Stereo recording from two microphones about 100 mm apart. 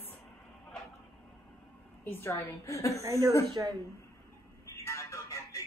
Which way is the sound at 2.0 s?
20° left (ahead or behind).